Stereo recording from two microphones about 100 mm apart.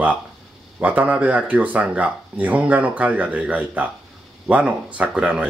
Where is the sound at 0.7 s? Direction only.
15° right (ahead or behind).